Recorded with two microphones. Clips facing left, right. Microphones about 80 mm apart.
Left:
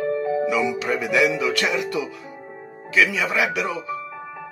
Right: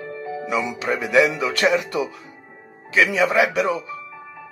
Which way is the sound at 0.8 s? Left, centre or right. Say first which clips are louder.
Right 2 dB; right.